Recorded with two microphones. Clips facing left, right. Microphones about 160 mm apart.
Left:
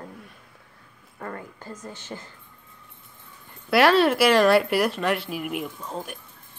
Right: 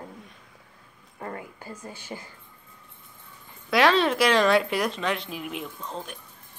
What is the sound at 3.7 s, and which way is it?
Speech, 5° left (ahead or behind).